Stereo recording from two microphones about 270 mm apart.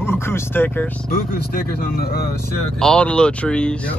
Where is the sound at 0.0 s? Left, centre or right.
Centre.